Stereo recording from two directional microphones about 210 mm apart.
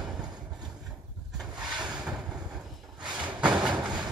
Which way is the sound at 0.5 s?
5° right (ahead or behind).